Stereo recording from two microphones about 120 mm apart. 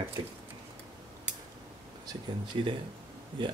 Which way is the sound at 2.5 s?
40° right (ahead or behind).